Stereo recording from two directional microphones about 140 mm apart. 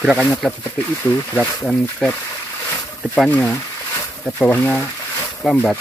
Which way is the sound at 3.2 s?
10° left (ahead or behind).